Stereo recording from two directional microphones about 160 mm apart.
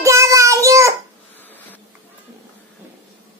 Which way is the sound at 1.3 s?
10° left (ahead or behind).